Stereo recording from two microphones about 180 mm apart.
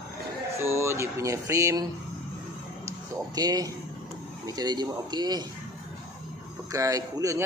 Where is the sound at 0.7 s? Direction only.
15° right (ahead or behind).